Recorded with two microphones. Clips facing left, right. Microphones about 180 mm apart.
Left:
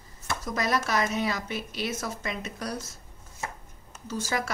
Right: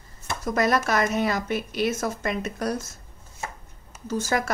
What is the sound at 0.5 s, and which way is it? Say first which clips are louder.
A woman's voice: right 5 dB; 55° right (ahead or behind).